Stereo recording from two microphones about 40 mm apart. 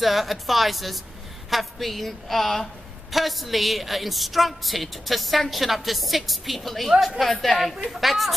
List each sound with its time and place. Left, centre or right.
0.0 s a woman's voice: centre